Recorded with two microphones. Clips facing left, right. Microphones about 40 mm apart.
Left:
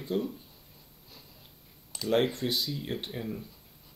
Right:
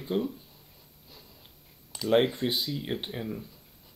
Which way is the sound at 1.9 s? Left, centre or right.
Centre.